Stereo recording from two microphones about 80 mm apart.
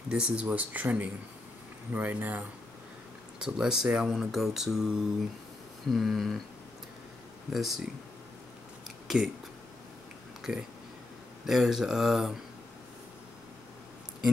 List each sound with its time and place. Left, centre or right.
0.1 s speech: centre
3.3 s speech: centre
7.5 s speech: centre
9.0 s a sound: centre
10.5 s speech: centre